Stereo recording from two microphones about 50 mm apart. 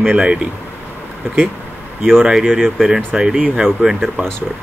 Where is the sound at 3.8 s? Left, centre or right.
Centre.